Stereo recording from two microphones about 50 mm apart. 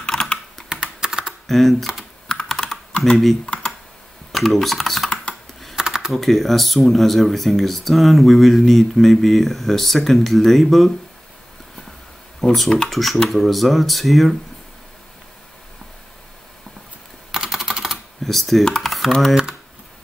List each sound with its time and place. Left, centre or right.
0.0 s typing: centre
0.7 s computer keyboard: centre
1.5 s speech: centre
2.4 s computer keyboard: centre
3.5 s computer keyboard: left
4.3 s typing: centre
5.8 s computer keyboard: centre
6.1 s speech: centre
12.4 s speech: centre
17.3 s typing: centre
18.2 s speech: centre